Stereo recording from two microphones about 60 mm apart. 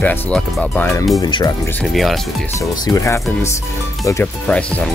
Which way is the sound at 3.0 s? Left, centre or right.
Left.